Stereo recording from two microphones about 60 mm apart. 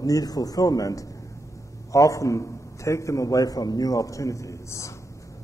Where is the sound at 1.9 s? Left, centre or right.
Left.